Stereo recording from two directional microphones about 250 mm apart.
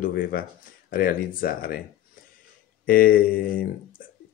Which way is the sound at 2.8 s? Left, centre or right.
Left.